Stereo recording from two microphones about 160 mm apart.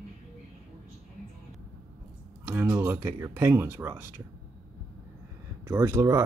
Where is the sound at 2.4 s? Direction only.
15° right (ahead or behind).